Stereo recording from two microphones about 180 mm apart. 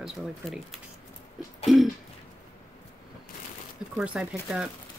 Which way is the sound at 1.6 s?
Centre (ahead or behind).